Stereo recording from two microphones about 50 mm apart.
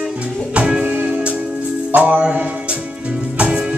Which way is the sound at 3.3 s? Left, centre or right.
Right.